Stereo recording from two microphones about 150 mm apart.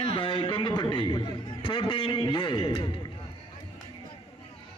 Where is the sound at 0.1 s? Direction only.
35° left (ahead or behind).